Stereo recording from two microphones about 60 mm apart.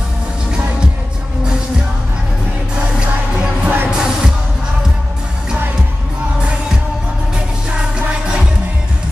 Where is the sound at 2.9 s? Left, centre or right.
Centre.